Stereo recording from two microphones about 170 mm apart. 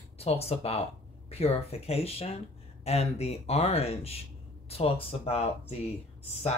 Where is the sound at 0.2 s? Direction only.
35° left (ahead or behind).